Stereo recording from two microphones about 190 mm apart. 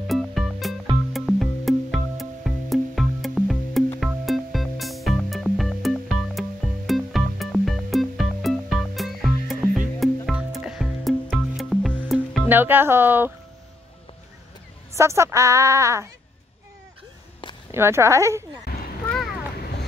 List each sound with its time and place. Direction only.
0.0 s music: centre (ahead or behind)
12.4 s a woman's voice: 10° right (ahead or behind)
15.0 s a woman's voice: 15° right (ahead or behind)
17.6 s a woman's voice: 15° right (ahead or behind)
18.7 s a sound: 55° left (ahead or behind)